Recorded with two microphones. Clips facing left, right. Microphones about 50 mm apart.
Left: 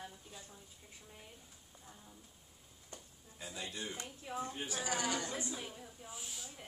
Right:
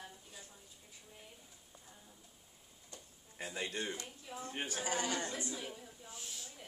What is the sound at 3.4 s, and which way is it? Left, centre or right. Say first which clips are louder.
A woman's voice: right 4 dB; right.